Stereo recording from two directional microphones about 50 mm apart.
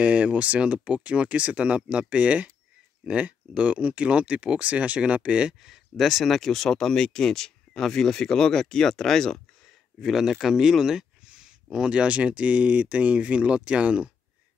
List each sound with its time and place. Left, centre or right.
0.0 s speech: right
5.5 s speech: centre
10.0 s speech: centre; by 14.1 s right